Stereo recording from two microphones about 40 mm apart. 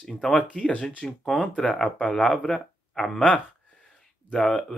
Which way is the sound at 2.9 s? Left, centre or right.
Centre.